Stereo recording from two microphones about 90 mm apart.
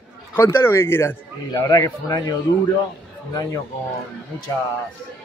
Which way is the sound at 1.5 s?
40° left (ahead or behind).